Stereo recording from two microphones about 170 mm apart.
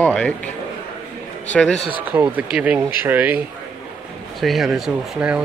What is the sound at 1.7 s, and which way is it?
Speech, 30° left (ahead or behind).